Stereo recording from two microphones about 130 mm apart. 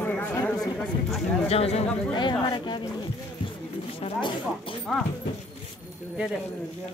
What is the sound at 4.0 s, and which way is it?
Speech, 40° left (ahead or behind).